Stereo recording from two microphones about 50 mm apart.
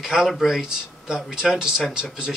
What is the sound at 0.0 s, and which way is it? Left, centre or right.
Speech, centre.